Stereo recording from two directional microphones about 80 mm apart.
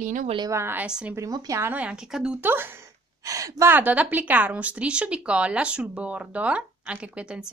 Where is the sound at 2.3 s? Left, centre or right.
Right.